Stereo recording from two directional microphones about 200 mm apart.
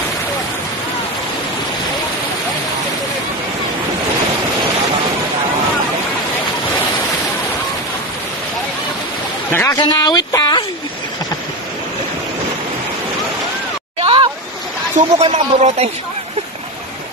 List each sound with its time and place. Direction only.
9.5 s speech: 10° left (ahead or behind)
9.8 s speech: 20° left (ahead or behind)
13.9 s a sound: 25° right (ahead or behind)
15.1 s speech: 30° right (ahead or behind)